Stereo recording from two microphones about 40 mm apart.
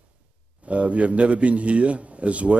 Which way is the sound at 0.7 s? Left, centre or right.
Right.